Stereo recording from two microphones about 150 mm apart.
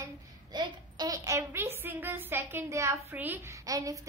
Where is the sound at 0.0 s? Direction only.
30° right (ahead or behind).